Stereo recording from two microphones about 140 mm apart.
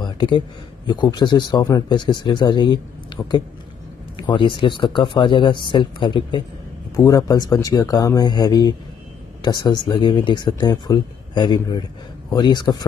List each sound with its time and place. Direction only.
0.0 s a sound: 30° left (ahead or behind)
0.8 s speech: 30° left (ahead or behind)
7.0 s speech: 25° left (ahead or behind)